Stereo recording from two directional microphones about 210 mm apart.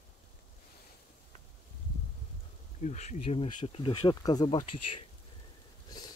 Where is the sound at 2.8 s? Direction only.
35° left (ahead or behind); by 4.6 s 20° left (ahead or behind).